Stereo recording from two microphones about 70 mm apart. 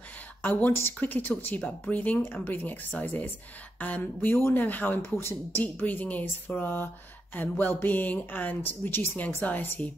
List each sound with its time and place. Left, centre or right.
0.4 s speech: left